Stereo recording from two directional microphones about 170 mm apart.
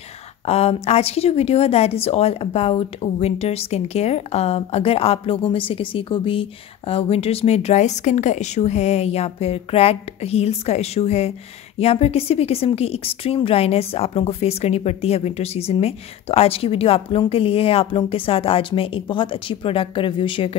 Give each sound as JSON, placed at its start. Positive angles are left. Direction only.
{"t": 0.5, "sound": "a woman's voice", "side_deg": 40}